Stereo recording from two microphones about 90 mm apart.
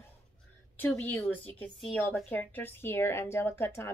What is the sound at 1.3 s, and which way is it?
A woman's voice, 15° left (ahead or behind).